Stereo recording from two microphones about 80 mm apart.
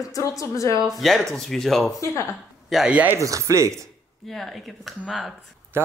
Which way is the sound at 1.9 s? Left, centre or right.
Left.